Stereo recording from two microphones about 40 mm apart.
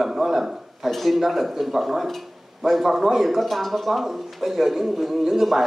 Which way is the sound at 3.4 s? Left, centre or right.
Centre.